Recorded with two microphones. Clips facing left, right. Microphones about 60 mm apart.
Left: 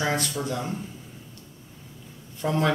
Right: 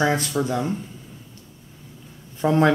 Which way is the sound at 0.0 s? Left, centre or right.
Right.